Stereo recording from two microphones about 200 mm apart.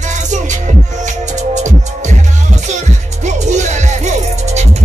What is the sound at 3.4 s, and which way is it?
Music, 35° right (ahead or behind).